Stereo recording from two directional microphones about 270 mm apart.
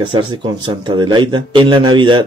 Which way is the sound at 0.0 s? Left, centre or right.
Centre.